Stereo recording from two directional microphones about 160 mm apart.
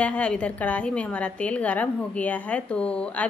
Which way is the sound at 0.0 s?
10° left (ahead or behind).